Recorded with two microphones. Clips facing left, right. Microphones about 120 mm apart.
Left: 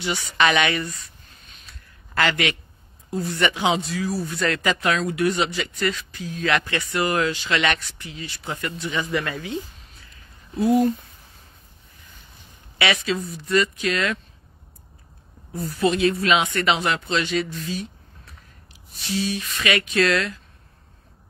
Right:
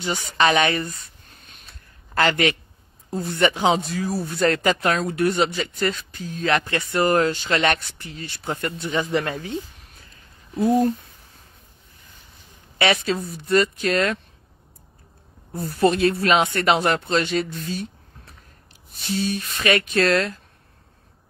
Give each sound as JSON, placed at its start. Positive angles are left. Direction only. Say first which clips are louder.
{"t": 0.0, "sound": "speech", "louder": "right 1 dB", "side_deg": -40}
{"t": 2.1, "sound": "speech", "louder": "right 3 dB", "side_deg": -40}
{"t": 9.3, "sound": "a sound", "louder": "right 1 dB", "side_deg": -45}
{"t": 12.8, "sound": "speech", "louder": "right 2 dB", "side_deg": -45}
{"t": 15.5, "sound": "a woman's voice", "louder": "even", "side_deg": 0}
{"t": 15.8, "sound": "speech", "louder": "right 2 dB", "side_deg": -50}
{"t": 18.9, "sound": "a sound", "louder": "right 1 dB", "side_deg": 0}
{"t": 19.3, "sound": "speech", "louder": "right 3 dB", "side_deg": -45}